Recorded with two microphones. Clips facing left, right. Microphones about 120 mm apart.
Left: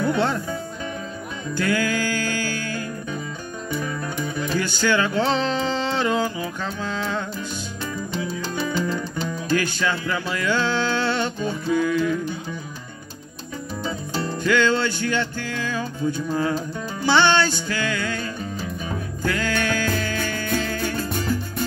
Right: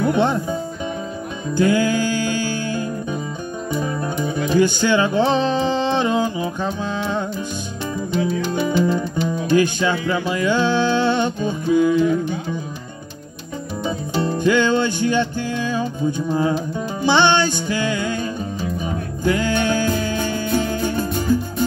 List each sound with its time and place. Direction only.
0.0 s music: 20° right (ahead or behind)
8.5 s music: 20° right (ahead or behind)
13.8 s music: 20° right (ahead or behind)